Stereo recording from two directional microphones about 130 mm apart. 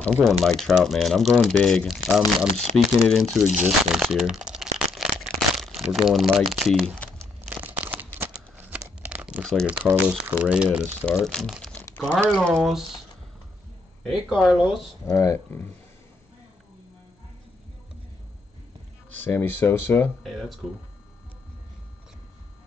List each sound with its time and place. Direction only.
0.0 s speech: 5° left (ahead or behind)
7.4 s crumpling: 10° right (ahead or behind)
9.4 s crumpling: centre (ahead or behind)
9.7 s speech: 15° right (ahead or behind)
11.2 s speech: 5° left (ahead or behind)
14.0 s speech: centre (ahead or behind)
15.0 s speech: 20° left (ahead or behind)
19.2 s speech: 15° left (ahead or behind)
20.2 s speech: centre (ahead or behind)